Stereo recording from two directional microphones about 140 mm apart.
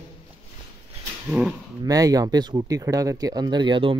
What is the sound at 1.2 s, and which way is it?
Speech, 10° right (ahead or behind).